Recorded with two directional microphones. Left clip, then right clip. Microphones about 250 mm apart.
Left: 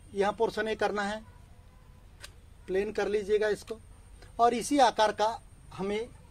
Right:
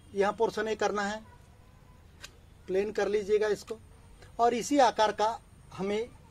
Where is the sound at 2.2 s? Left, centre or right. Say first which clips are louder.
Even; centre.